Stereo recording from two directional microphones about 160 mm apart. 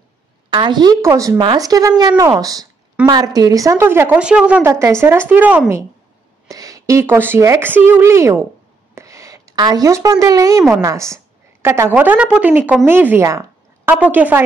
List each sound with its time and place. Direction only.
0.5 s a woman's voice: 30° right (ahead or behind); by 4.6 s 5° right (ahead or behind)
4.6 s speech: 20° right (ahead or behind)
6.5 s speech: 20° right (ahead or behind)
8.9 s a sound: 20° right (ahead or behind)
10.8 s a woman's voice: 20° right (ahead or behind)